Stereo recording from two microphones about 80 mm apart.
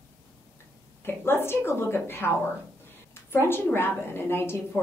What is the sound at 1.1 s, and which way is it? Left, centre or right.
A woman's voice, left.